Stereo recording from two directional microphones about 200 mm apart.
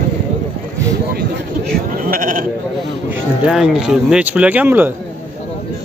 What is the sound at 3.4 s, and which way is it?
Speech, centre (ahead or behind).